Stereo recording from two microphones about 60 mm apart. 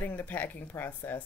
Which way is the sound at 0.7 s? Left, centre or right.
Left.